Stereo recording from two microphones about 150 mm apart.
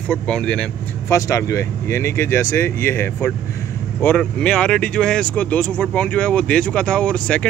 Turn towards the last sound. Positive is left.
turn(degrees=5)  # may be behind; listen again after turning